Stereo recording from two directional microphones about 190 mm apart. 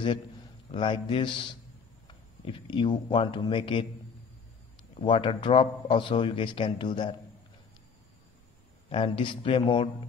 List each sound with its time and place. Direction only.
0.7 s a man's voice: 25° left (ahead or behind)
4.9 s a man's voice: 25° left (ahead or behind)
8.9 s a man's voice: 30° left (ahead or behind)